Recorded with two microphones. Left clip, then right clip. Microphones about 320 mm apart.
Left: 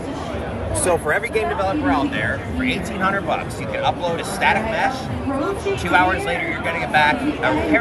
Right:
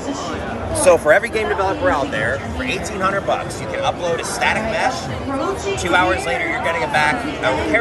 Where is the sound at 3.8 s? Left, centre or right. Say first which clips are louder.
Right 1 dB; centre.